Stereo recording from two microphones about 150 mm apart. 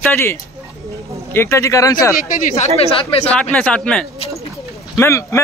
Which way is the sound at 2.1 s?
60° left (ahead or behind).